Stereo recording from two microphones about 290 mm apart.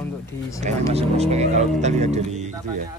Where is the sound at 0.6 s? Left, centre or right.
Right.